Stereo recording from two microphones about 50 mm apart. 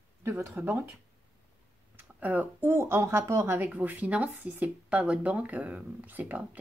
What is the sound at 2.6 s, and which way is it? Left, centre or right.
Speech, right.